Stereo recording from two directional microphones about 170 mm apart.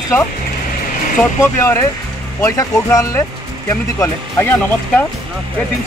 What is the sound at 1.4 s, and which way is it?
Speech, 15° left (ahead or behind).